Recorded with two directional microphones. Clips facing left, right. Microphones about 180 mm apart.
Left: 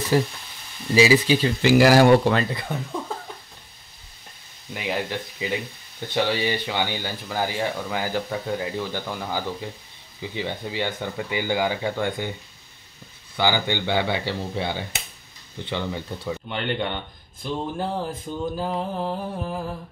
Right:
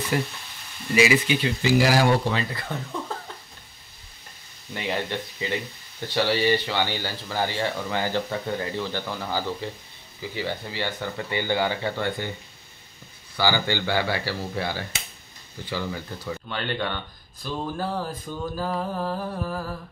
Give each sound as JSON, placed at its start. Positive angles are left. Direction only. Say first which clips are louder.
{"t": 0.1, "sound": "speech", "louder": "left 7 dB", "side_deg": 30}
{"t": 1.6, "sound": "speech", "louder": "left 6 dB", "side_deg": 65}
{"t": 2.5, "sound": "speech", "louder": "left 3 dB", "side_deg": 15}
{"t": 4.7, "sound": "speech", "louder": "left 1 dB", "side_deg": 5}
{"t": 13.4, "sound": "speech", "louder": "left 1 dB", "side_deg": 20}